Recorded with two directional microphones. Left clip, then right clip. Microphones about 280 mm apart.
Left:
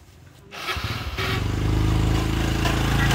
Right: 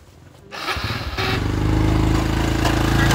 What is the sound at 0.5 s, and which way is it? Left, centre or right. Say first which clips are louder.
Vehicle: right 4 dB; centre.